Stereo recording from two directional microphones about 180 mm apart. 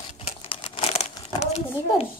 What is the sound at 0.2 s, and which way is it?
Crumpling, 30° left (ahead or behind).